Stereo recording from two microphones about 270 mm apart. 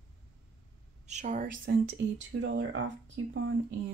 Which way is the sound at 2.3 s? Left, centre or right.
Right.